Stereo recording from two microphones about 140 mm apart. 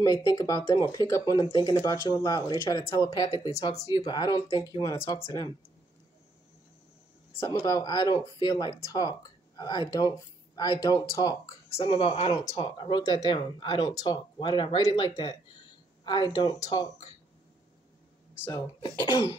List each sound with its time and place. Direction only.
0.0 s speech: 25° left (ahead or behind)
3.9 s speech: 30° left (ahead or behind)
7.6 s speech: 30° left (ahead or behind)
11.7 s speech: 40° left (ahead or behind)
18.5 s speech: 30° left (ahead or behind)